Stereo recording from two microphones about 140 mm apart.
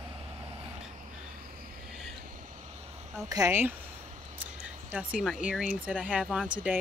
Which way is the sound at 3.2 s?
25° right (ahead or behind).